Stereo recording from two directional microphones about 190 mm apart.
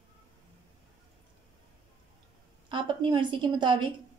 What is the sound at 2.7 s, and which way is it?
A woman's voice, 25° right (ahead or behind).